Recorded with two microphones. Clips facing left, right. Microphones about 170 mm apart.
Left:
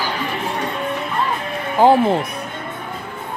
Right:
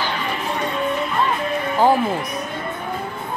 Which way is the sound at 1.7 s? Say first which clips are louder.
Left 5 dB; 25° left (ahead or behind).